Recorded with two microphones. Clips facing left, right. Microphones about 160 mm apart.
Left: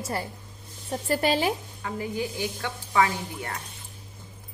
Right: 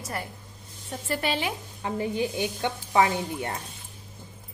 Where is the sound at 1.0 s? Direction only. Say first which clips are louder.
Left 4 dB; 40° left (ahead or behind).